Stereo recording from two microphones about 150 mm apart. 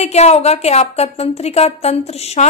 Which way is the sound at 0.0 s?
45° left (ahead or behind).